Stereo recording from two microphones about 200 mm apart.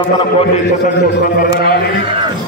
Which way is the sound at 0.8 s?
45° left (ahead or behind).